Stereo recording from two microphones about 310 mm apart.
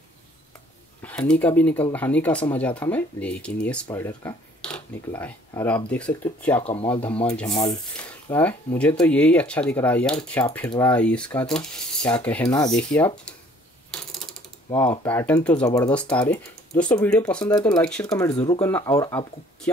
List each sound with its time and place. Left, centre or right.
1.0 s speech: centre
6.6 s speech: centre
7.0 s speech: centre
13.8 s mechanisms: centre